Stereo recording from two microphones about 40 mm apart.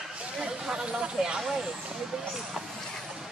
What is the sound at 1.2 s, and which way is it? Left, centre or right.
Vehicle, centre.